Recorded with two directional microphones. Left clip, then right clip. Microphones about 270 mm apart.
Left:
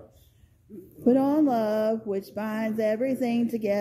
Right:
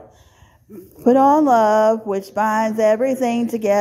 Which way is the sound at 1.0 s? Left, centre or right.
Centre.